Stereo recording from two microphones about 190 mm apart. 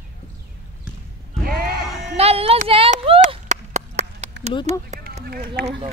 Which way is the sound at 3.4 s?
40° right (ahead or behind).